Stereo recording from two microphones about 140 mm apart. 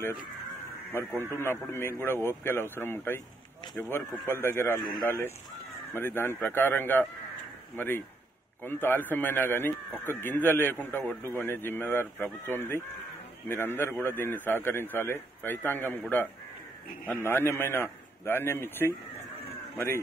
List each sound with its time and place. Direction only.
1.3 s a man's voice: 20° left (ahead or behind)